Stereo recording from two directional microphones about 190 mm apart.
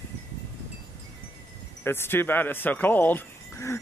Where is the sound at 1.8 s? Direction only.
10° left (ahead or behind).